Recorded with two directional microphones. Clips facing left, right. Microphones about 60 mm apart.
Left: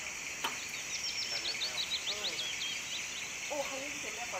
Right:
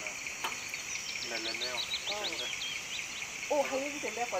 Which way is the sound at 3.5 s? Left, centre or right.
Right.